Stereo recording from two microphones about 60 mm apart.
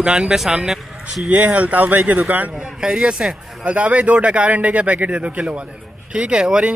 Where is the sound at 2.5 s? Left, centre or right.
Centre.